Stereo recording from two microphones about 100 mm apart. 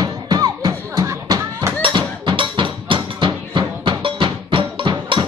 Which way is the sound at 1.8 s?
50° right (ahead or behind).